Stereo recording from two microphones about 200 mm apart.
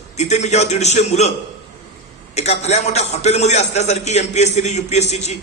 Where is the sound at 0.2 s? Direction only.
35° left (ahead or behind).